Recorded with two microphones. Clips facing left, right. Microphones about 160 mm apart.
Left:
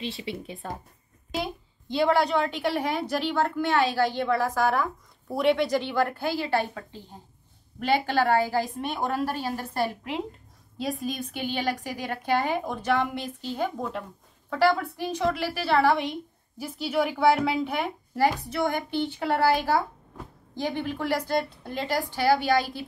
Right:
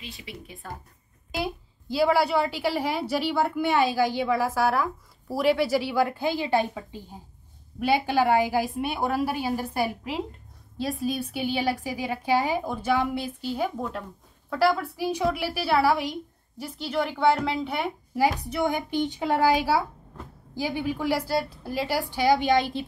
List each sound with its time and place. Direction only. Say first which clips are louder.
0.2 s speech: left 7 dB; 25° left (ahead or behind)
1.3 s a woman's voice: right 1 dB; 5° right (ahead or behind)
18.5 s a woman's voice: right 1 dB; 15° right (ahead or behind)